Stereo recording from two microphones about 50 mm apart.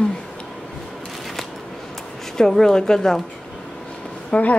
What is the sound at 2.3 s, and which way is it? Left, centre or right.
Speech, centre.